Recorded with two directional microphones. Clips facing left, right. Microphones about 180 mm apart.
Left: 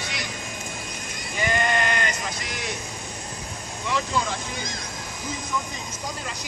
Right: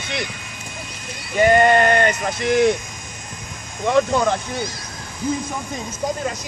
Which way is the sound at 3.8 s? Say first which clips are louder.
Right 10 dB; 55° right (ahead or behind).